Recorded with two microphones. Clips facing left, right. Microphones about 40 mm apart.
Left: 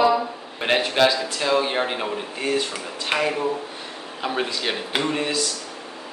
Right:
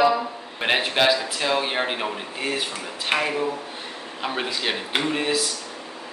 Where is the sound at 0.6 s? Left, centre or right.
Centre.